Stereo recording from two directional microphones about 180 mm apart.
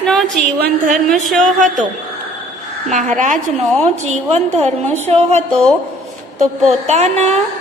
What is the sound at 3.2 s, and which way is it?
A woman's voice, 45° right (ahead or behind).